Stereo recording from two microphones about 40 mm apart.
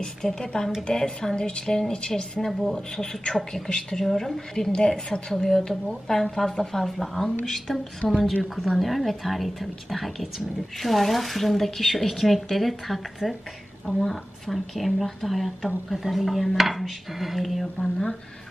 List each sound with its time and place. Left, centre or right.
0.0 s a woman's voice: centre
8.0 s a woman's voice: centre
8.4 s a woman's voice: centre
17.7 s a woman's voice: centre